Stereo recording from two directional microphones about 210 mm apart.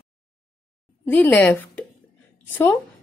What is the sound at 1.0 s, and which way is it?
A woman's voice, 10° left (ahead or behind).